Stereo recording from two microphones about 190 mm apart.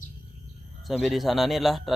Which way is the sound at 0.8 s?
Centre (ahead or behind).